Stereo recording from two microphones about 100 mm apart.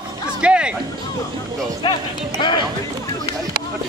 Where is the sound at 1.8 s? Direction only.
50° left (ahead or behind).